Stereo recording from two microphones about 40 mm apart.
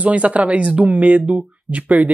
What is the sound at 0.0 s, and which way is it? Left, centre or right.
Speech, right.